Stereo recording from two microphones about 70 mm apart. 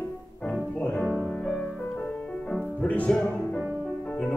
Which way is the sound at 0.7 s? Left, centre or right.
Centre.